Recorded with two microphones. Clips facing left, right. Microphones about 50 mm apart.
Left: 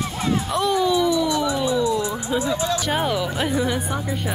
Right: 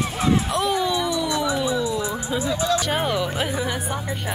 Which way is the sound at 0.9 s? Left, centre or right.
Right.